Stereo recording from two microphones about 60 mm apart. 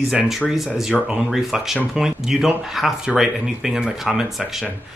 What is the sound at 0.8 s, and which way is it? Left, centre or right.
Speech, centre.